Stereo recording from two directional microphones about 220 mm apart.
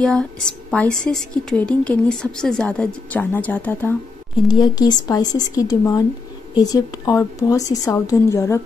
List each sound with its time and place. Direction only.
0.0 s a woman's voice: 5° left (ahead or behind)
4.5 s speech: 20° left (ahead or behind)